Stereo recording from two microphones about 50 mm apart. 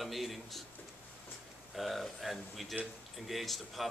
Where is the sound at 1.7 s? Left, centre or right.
Centre.